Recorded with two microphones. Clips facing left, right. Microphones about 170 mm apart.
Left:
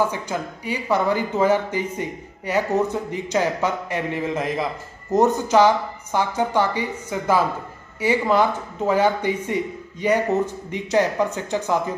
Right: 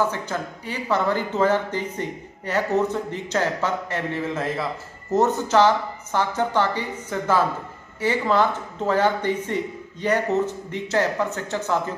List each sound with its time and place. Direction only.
0.1 s speech: 10° left (ahead or behind)